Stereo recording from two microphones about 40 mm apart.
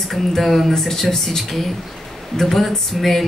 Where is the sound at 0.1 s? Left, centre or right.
Centre.